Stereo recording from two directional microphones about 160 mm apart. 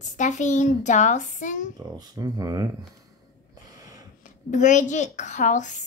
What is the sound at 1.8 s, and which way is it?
Speech, 25° right (ahead or behind).